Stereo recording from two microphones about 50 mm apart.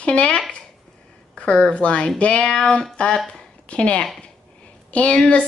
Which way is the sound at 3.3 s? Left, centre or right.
Left.